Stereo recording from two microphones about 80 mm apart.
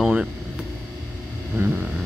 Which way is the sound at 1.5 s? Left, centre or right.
Right.